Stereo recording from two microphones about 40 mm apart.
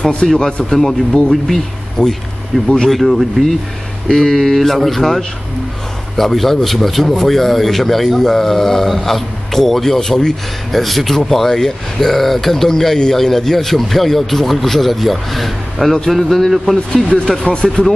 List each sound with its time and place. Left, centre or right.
0.0 s a man's voice: left
0.7 s speech: centre
2.0 s speech: left
2.5 s speech: centre
17.5 s speech: left